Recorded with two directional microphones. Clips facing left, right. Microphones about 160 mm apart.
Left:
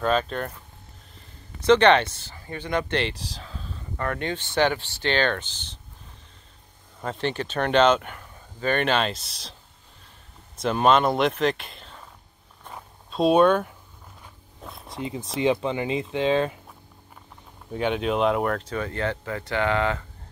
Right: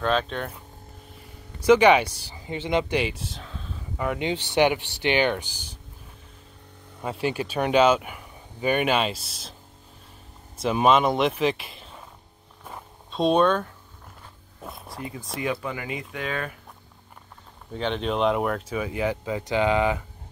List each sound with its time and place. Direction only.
0.0 s speech: 5° left (ahead or behind)
1.6 s speech: 10° right (ahead or behind)
3.0 s a sound: 5° right (ahead or behind)
4.0 s speech: 15° right (ahead or behind)
7.0 s speech: 10° right (ahead or behind)
10.6 s speech: 5° right (ahead or behind)
12.6 s zipper: centre (ahead or behind)
14.6 s zipper: centre (ahead or behind)
15.0 s speech: 20° left (ahead or behind)
17.7 s speech: 10° left (ahead or behind); by 20.1 s 15° right (ahead or behind)